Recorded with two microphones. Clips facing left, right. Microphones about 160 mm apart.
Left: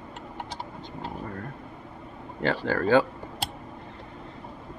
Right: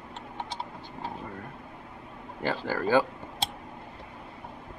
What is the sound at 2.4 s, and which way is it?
Speech, 10° right (ahead or behind).